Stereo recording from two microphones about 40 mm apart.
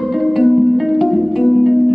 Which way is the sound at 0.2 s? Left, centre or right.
Centre.